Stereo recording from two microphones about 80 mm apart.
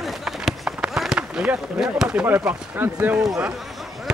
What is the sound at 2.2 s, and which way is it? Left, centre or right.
Speech, right.